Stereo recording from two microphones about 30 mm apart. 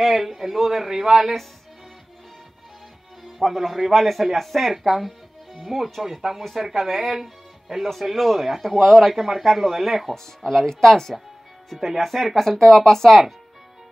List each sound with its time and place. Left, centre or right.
0.0 s a man's voice: centre
3.3 s speech: centre
9.1 s a man's voice: centre
10.7 s speech: centre
12.0 s speech: centre